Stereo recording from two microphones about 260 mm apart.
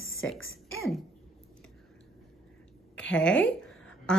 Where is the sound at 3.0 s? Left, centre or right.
Centre.